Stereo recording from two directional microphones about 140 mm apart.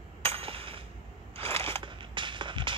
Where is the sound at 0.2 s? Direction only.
40° right (ahead or behind).